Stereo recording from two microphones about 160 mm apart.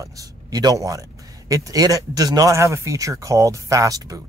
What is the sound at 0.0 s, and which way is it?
A man's voice, 20° right (ahead or behind).